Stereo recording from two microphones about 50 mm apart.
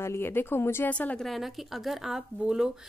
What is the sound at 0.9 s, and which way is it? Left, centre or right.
Speech, left.